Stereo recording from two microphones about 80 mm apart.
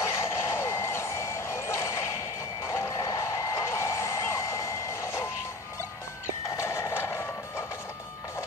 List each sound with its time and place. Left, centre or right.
0.0 s reversing beeps: left
2.6 s vehicle: left
6.5 s vehicle: left